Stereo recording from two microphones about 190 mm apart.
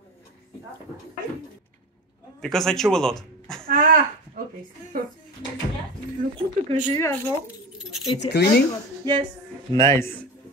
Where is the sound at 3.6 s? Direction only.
45° right (ahead or behind).